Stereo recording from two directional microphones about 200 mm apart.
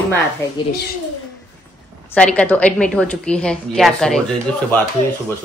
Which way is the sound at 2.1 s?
5° left (ahead or behind).